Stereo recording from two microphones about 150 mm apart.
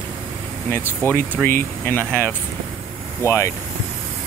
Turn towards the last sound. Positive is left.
turn(degrees=20)  # may be behind; listen again after turning